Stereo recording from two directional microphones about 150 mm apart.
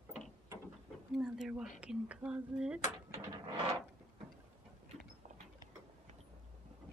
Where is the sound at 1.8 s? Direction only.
10° right (ahead or behind).